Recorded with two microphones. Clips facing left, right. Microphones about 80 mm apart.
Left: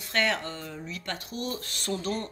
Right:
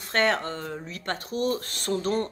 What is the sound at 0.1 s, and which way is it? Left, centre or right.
Speech, right.